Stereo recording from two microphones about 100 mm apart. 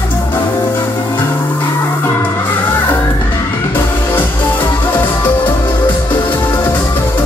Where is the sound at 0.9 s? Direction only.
50° left (ahead or behind).